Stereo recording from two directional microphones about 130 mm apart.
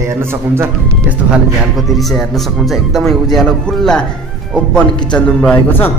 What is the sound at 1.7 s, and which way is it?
Speech, centre (ahead or behind).